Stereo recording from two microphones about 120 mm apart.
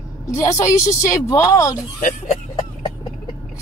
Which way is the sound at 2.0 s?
75° left (ahead or behind).